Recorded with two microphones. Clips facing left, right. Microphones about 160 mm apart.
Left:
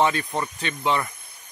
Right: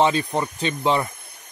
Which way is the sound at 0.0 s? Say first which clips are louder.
Right 3 dB; 25° right (ahead or behind).